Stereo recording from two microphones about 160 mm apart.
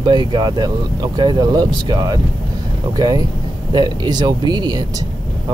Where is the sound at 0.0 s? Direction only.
30° right (ahead or behind).